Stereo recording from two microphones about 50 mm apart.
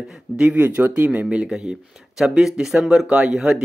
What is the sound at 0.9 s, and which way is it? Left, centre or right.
Speech, right.